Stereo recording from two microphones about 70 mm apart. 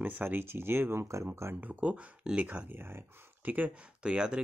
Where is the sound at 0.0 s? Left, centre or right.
Right.